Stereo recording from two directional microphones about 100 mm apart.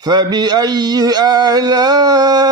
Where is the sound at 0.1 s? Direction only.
45° right (ahead or behind).